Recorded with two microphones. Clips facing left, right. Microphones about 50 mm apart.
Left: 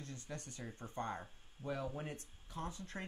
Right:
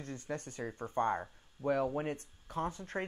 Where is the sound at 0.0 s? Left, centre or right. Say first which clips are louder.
Right 8 dB; right.